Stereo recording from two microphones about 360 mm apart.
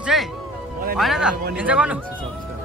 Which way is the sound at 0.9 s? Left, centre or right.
Centre.